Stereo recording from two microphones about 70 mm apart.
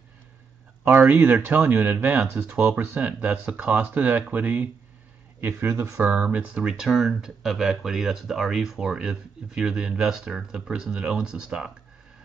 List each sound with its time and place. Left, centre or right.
0.8 s speech: right
5.6 s speech: right
6.1 s speech: centre